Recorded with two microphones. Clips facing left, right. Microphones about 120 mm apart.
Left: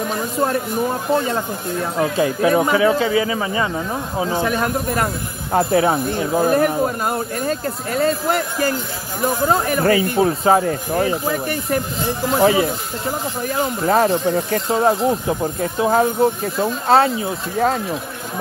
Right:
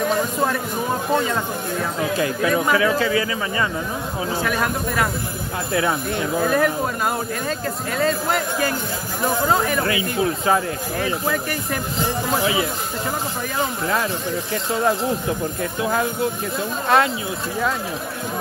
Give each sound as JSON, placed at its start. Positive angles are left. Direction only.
{"t": 2.0, "sound": "speech", "side_deg": 30}
{"t": 13.8, "sound": "speech", "side_deg": 40}